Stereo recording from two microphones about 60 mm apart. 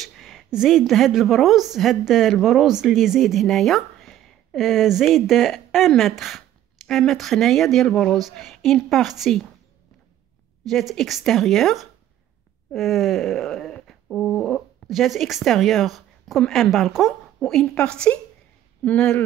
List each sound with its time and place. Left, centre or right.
0.0 s a sound: centre
0.5 s a woman's voice: centre
3.4 s a woman's voice: centre
10.6 s a woman's voice: centre
12.7 s a sound: centre
16.7 s a woman's voice: centre
17.7 s a woman's voice: centre